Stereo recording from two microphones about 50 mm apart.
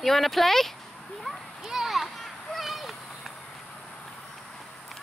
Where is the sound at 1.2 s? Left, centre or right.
Centre.